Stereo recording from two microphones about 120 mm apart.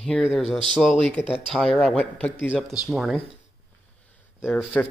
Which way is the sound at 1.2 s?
20° left (ahead or behind).